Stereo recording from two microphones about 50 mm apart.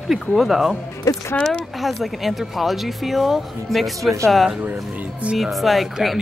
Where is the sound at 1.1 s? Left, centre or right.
Left.